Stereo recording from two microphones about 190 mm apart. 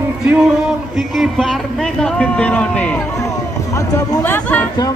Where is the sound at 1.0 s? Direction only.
Centre (ahead or behind).